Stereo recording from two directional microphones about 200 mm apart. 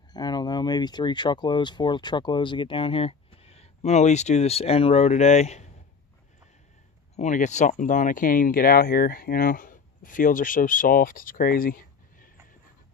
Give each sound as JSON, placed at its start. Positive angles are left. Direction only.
{"t": 0.1, "sound": "speech", "side_deg": 20}
{"t": 7.2, "sound": "speech", "side_deg": 35}